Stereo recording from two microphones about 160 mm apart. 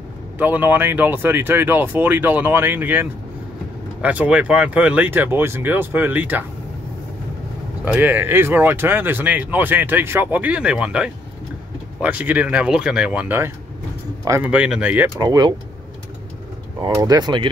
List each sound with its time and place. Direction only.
0.4 s speech: 10° right (ahead or behind)
7.8 s speech: 10° right (ahead or behind)
15.1 s speech: 25° right (ahead or behind)
16.8 s speech: 25° right (ahead or behind)